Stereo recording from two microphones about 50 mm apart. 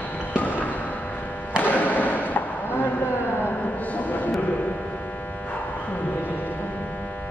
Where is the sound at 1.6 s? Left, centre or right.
Left.